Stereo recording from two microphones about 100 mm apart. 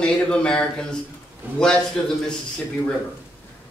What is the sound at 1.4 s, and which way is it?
Speech, 20° right (ahead or behind).